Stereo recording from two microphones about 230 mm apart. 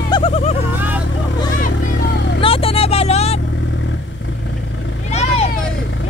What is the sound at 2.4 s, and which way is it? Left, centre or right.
Vehicle, left.